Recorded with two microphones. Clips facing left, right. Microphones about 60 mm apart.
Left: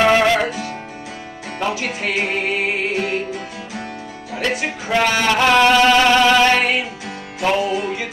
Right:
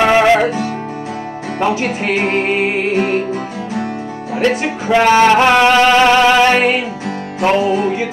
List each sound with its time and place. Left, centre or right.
0.0 s music: centre
1.6 s music: right
4.4 s speech: right
7.3 s music: right